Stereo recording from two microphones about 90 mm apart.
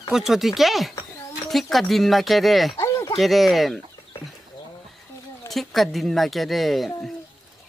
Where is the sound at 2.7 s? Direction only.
35° left (ahead or behind).